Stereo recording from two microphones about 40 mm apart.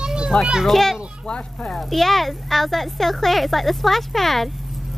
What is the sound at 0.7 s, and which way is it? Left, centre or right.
Speech, centre.